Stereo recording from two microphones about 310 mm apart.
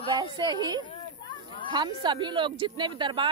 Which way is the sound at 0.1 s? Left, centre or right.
Centre.